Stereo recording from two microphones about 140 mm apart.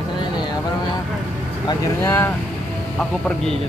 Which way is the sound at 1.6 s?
20° left (ahead or behind).